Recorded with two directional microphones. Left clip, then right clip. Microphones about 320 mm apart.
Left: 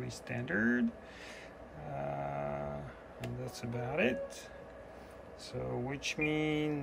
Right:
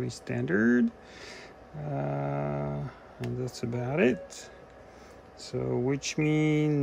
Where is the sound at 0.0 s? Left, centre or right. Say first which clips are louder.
Right 7 dB; centre.